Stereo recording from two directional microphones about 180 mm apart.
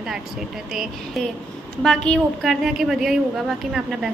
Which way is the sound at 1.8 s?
5° left (ahead or behind).